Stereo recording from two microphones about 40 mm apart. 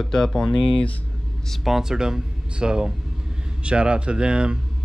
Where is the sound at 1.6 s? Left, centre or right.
Centre.